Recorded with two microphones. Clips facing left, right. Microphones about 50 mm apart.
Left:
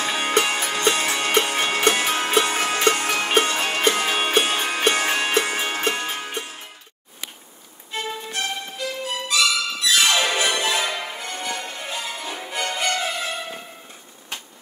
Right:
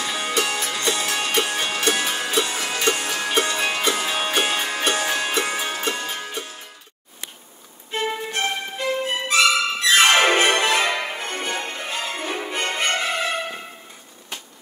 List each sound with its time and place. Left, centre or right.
0.0 s music: left
7.9 s music: right